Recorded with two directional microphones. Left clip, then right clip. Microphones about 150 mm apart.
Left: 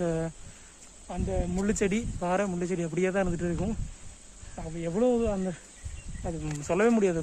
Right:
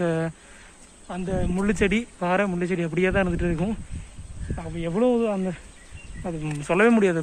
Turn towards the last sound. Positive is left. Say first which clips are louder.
# right 5 dB
turn(degrees=-5)  # may be behind; listen again after turning